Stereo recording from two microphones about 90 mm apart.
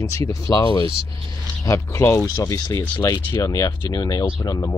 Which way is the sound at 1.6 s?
35° left (ahead or behind).